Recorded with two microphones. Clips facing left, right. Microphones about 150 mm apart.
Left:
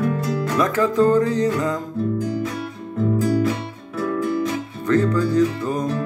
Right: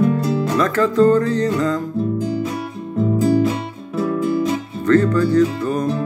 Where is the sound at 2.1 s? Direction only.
25° right (ahead or behind).